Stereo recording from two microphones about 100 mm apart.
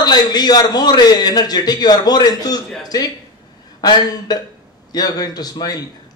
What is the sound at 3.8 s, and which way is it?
Speech, 40° left (ahead or behind).